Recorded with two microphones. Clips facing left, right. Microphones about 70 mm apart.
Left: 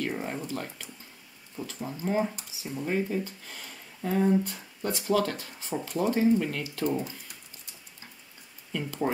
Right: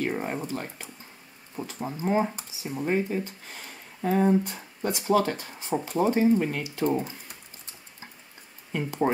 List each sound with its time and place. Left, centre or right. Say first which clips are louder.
0.0 s speech: right 3 dB; right
8.7 s speech: right 4 dB; right